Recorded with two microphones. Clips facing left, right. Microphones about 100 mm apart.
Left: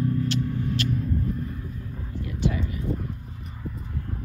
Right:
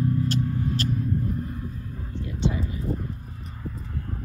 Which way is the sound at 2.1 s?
25° right (ahead or behind).